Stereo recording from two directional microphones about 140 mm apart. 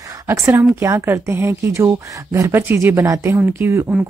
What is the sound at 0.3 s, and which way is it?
Speech, 20° right (ahead or behind).